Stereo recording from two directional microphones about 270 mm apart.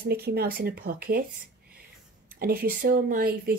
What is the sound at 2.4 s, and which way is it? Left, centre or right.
Speech, right.